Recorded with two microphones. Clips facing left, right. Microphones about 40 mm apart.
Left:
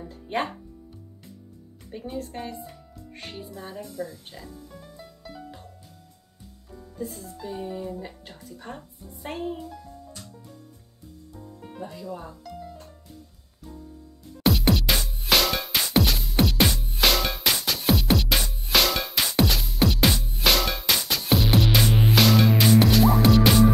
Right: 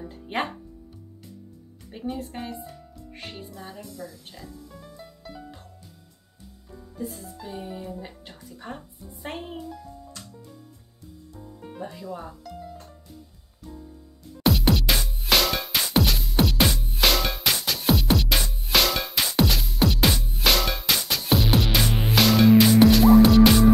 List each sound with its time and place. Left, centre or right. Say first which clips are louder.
1.9 s speech: right 1 dB; centre
3.2 s music: left 1 dB; centre
4.0 s speech: left 7 dB; left
4.7 s music: even; centre
6.7 s speech: even; centre
9.2 s a child's voice: left 3 dB; right
11.3 s music: right 1 dB; centre
11.8 s speech: even; centre
12.4 s music: even; centre
14.4 s music: even; centre